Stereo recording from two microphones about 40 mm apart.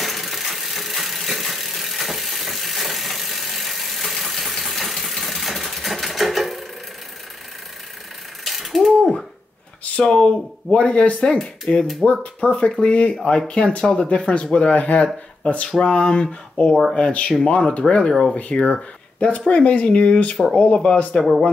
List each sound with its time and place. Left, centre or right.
0.0 s a sound: centre
8.5 s mechanisms: centre
10.0 s speech: left
21.2 s speech: centre